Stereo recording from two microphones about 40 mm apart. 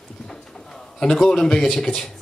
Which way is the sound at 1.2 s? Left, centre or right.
Centre.